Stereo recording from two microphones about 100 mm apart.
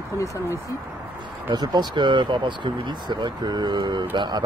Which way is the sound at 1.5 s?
50° right (ahead or behind).